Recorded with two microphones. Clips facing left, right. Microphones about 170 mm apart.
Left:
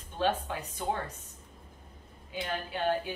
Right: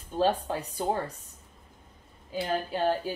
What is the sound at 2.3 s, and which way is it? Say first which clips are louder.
Speech: right 6 dB; 40° right (ahead or behind).